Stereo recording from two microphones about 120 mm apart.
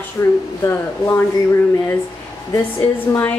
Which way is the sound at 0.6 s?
20° left (ahead or behind).